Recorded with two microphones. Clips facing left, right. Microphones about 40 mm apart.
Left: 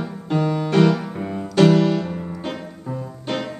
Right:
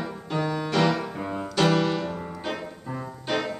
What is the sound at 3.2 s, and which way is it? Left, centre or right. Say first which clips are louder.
Music: left 1 dB; centre.